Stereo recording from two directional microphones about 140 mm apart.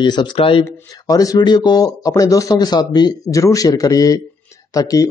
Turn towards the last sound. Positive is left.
turn(degrees=25)  # may be behind; listen again after turning